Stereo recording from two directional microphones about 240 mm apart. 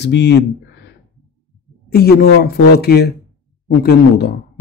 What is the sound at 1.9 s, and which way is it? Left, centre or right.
Speech, left.